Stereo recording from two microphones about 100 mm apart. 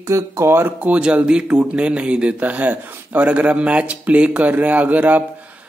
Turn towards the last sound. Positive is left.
turn(degrees=-15)  # may be behind; listen again after turning